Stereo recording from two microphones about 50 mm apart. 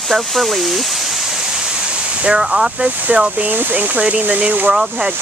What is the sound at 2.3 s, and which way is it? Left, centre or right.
Speech, centre.